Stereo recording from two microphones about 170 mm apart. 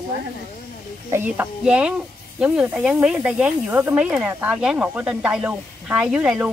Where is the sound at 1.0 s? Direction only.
15° right (ahead or behind).